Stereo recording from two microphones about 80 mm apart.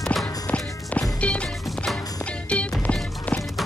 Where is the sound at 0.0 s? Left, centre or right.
Centre.